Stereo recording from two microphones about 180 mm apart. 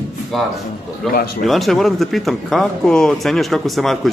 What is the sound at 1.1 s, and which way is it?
Speech, 60° left (ahead or behind).